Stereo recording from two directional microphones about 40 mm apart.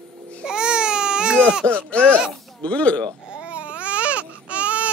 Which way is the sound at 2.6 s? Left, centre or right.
Left.